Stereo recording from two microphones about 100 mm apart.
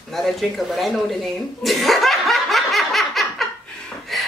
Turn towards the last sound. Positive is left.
turn(degrees=0)  # may be behind; listen again after turning